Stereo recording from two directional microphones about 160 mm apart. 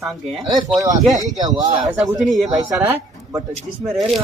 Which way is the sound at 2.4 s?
25° right (ahead or behind).